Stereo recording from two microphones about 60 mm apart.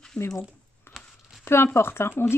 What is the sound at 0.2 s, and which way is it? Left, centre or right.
Speech, centre.